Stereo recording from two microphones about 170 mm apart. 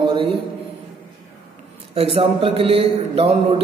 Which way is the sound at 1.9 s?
35° right (ahead or behind).